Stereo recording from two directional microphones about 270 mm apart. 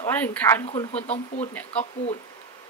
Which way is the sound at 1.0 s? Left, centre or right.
Left.